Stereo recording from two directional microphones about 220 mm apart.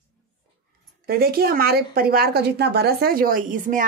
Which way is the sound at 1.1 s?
45° right (ahead or behind).